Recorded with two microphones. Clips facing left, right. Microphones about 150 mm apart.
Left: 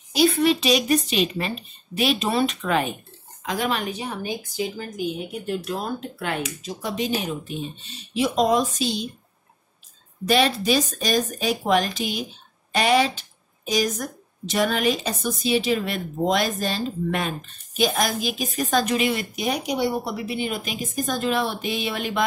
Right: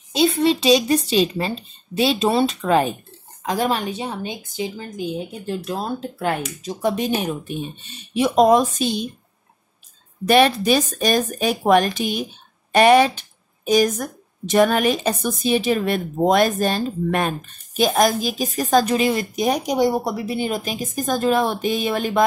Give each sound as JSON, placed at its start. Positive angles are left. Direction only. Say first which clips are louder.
{"t": 0.1, "sound": "a woman's voice", "louder": "right 1 dB", "side_deg": -25}
{"t": 6.4, "sound": "speech", "louder": "right 7 dB", "side_deg": -50}
{"t": 10.2, "sound": "speech", "louder": "right 5 dB", "side_deg": -55}